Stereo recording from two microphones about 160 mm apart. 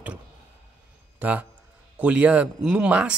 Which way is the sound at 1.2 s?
10° right (ahead or behind).